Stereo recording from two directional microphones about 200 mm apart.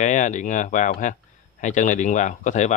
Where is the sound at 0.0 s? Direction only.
35° left (ahead or behind).